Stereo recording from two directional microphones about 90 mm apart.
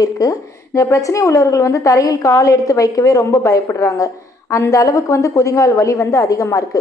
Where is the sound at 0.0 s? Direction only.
40° left (ahead or behind).